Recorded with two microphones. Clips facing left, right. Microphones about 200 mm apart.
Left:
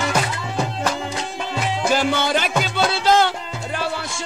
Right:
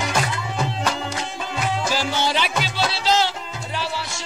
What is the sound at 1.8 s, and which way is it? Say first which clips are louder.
Music: left 7 dB; 55° left (ahead or behind).